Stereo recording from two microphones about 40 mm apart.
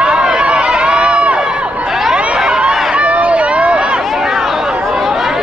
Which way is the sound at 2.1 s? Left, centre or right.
Right.